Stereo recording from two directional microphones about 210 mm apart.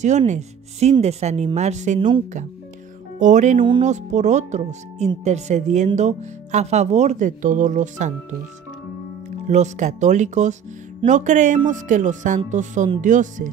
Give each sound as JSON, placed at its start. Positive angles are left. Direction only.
{"t": 0.3, "sound": "speech", "side_deg": -30}
{"t": 3.2, "sound": "speech", "side_deg": -35}
{"t": 3.5, "sound": "speech", "side_deg": -25}
{"t": 3.9, "sound": "speech", "side_deg": -35}
{"t": 9.5, "sound": "speech", "side_deg": -35}